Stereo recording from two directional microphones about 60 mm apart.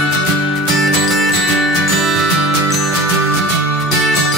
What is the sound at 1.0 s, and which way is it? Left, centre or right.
Music, centre.